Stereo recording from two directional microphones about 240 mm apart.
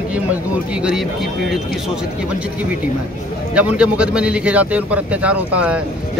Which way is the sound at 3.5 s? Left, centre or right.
Centre.